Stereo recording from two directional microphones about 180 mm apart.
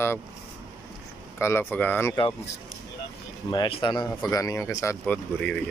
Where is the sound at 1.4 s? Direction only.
15° left (ahead or behind).